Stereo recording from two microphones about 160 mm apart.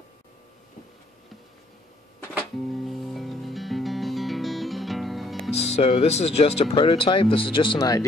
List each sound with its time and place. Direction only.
2.7 s music: centre (ahead or behind)
5.5 s speech: 40° left (ahead or behind)